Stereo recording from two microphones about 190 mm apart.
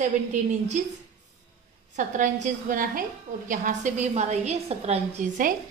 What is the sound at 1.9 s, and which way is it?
A woman's voice, 40° right (ahead or behind).